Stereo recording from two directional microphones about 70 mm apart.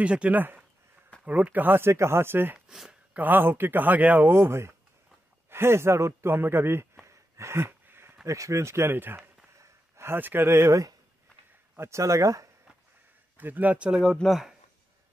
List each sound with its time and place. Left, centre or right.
0.0 s speech: centre
2.7 s speech: centre
3.2 s speech: right
4.3 s speech: right
7.1 s a sound: right
8.3 s speech: right
9.6 s a sound: right
11.7 s speech: right
12.0 s speech: right
13.4 s speech: right
14.2 s speech: centre